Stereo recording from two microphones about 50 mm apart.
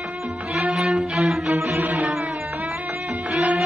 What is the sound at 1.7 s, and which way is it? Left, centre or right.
Music, right.